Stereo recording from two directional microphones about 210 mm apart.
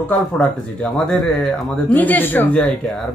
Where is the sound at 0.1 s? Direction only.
5° left (ahead or behind).